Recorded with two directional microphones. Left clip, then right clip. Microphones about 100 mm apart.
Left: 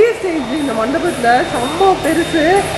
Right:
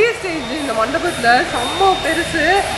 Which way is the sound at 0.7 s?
15° right (ahead or behind).